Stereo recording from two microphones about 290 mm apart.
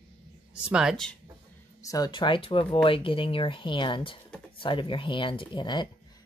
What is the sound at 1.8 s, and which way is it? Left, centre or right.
Speech, centre.